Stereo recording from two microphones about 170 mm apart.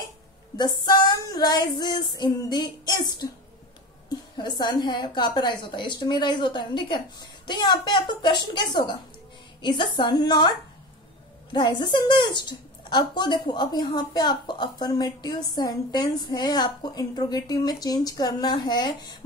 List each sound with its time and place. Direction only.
0.6 s a woman's voice: 25° left (ahead or behind)
4.4 s a woman's voice: 25° left (ahead or behind)
11.5 s a woman's voice: 30° left (ahead or behind)